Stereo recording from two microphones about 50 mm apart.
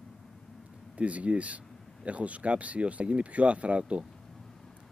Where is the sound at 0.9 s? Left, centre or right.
Right.